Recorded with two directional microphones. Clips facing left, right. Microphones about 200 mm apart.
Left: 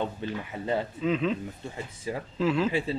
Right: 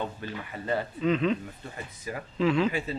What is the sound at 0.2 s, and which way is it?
Speech, 25° left (ahead or behind).